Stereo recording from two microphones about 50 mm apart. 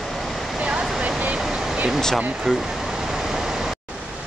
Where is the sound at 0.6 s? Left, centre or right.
Centre.